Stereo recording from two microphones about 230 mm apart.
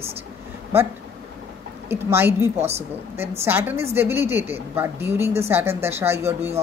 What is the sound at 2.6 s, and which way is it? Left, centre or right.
Speech, right.